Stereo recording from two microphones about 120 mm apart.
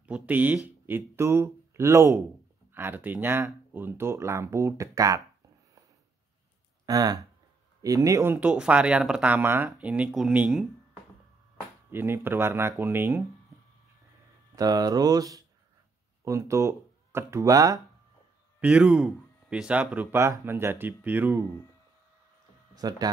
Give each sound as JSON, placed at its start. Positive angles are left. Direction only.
{"t": 0.0, "sound": "speech", "side_deg": -15}
{"t": 6.9, "sound": "speech", "side_deg": -30}
{"t": 11.9, "sound": "speech", "side_deg": -20}
{"t": 14.5, "sound": "speech", "side_deg": -30}
{"t": 18.6, "sound": "speech", "side_deg": -10}
{"t": 22.8, "sound": "speech", "side_deg": -30}